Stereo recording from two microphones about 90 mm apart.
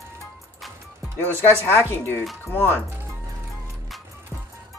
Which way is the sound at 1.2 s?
25° left (ahead or behind).